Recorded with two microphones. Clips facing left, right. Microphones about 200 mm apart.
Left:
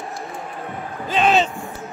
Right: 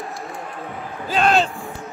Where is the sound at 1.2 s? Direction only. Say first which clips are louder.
Even; centre (ahead or behind).